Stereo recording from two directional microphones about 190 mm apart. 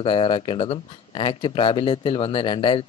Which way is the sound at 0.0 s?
30° left (ahead or behind).